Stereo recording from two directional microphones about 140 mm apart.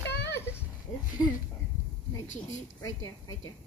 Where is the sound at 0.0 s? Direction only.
15° left (ahead or behind).